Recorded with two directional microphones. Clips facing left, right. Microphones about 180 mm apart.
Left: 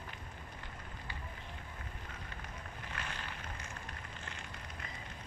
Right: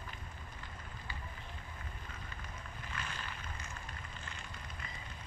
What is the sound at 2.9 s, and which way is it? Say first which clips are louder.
Boat: even; 65° left (ahead or behind).